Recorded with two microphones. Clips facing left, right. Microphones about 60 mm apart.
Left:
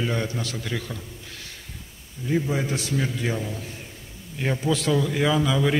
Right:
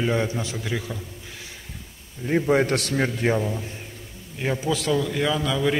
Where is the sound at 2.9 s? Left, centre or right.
Right.